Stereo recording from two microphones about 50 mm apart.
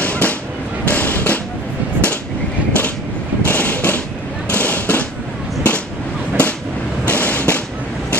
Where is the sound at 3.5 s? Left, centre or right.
Left.